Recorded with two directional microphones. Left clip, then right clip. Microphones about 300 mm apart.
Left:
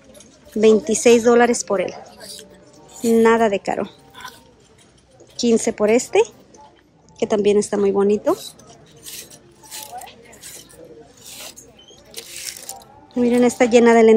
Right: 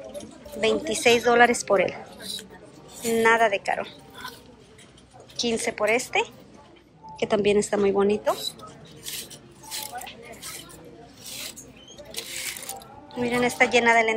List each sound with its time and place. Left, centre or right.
0.6 s a woman's voice: left
3.1 s speech: centre
5.3 s a woman's voice: centre
13.1 s speech: centre